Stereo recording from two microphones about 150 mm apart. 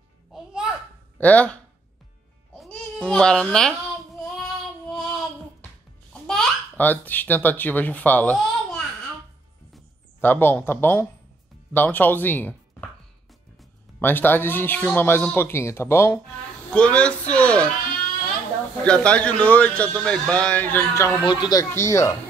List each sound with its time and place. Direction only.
0.3 s babbling: 5° right (ahead or behind)
1.1 s speech: 10° left (ahead or behind)
2.6 s speech: 5° left (ahead or behind)
4.4 s child singing: 5° left (ahead or behind)
6.2 s a child's voice: 10° left (ahead or behind)
10.2 s a man's voice: 15° left (ahead or behind)
13.9 s a man's voice: 15° left (ahead or behind)
18.9 s a man's voice: 5° left (ahead or behind)
21.3 s speech: 30° left (ahead or behind)